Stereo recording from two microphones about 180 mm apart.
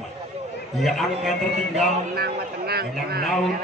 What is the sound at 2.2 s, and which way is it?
Speech, 60° right (ahead or behind).